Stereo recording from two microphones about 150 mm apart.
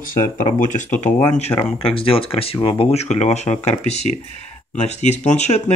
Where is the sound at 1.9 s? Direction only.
40° left (ahead or behind).